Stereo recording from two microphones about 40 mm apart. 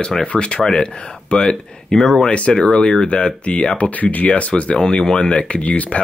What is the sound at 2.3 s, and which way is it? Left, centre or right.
Speech, left.